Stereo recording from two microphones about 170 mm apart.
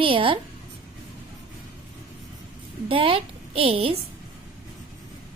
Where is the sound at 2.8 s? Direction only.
30° right (ahead or behind).